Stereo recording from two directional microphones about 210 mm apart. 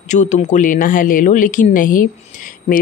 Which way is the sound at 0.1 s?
35° left (ahead or behind).